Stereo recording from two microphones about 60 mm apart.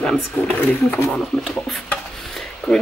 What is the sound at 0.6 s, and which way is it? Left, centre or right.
Speech, left.